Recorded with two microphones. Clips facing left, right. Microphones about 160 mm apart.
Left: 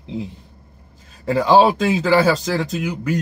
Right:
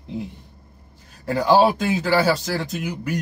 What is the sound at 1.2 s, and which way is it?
Speech, 90° left.